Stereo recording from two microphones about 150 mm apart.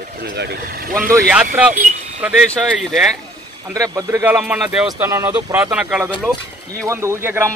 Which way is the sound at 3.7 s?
20° right (ahead or behind).